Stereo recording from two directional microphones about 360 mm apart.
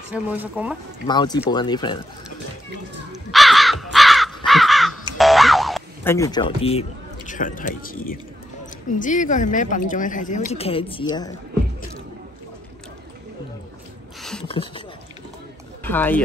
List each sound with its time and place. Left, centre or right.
0.1 s speech: centre
1.0 s speech: centre
3.1 s crow: centre
5.1 s boing: centre; by 8.2 s left
8.9 s a woman's voice: left
14.4 s a sound: centre
15.8 s speech: centre